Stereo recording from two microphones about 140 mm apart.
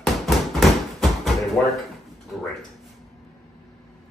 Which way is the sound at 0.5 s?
Centre (ahead or behind).